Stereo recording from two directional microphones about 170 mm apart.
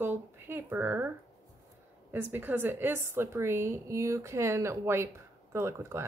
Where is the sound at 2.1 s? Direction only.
10° right (ahead or behind).